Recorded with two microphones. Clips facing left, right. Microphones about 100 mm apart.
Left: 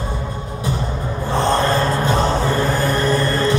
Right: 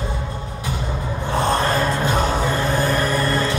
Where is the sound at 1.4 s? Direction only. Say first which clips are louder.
Left 2 dB; 30° left (ahead or behind).